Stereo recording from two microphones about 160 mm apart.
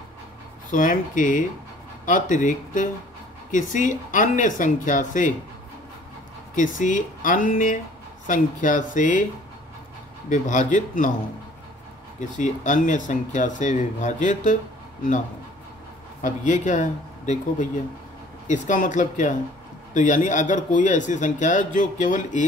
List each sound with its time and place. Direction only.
0.7 s speech: 55° left (ahead or behind)
6.5 s speech: 55° left (ahead or behind)
10.3 s speech: 50° left (ahead or behind)
12.2 s speech: 50° left (ahead or behind)
16.2 s speech: 55° left (ahead or behind)